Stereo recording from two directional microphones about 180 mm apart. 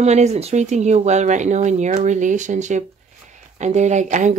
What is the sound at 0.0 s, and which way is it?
Speech, 40° right (ahead or behind).